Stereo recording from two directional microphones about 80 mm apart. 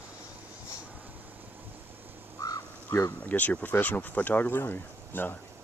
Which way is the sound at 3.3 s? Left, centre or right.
Left.